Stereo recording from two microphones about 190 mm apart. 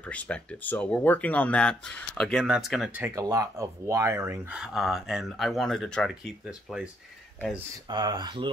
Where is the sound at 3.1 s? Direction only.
15° right (ahead or behind).